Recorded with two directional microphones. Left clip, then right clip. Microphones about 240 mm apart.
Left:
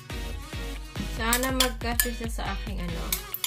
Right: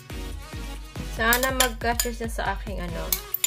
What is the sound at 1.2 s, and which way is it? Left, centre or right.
Dishes, right.